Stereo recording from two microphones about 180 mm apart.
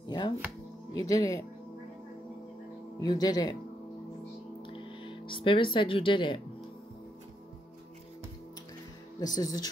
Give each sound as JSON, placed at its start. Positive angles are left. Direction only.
{"t": 0.0, "sound": "music", "side_deg": 25}
{"t": 0.9, "sound": "speech", "side_deg": 20}
{"t": 3.0, "sound": "speech", "side_deg": 20}
{"t": 4.6, "sound": "music", "side_deg": 30}
{"t": 9.2, "sound": "speech", "side_deg": 20}